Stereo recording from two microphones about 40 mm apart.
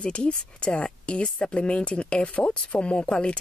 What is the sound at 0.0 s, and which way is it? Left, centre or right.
A woman's voice, left.